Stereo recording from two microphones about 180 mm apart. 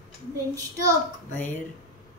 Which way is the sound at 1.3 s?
10° left (ahead or behind).